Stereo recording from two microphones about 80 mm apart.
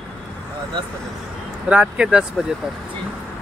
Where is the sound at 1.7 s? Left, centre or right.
Centre.